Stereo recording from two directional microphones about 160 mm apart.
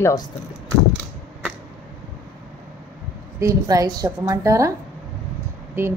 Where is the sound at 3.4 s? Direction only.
20° right (ahead or behind).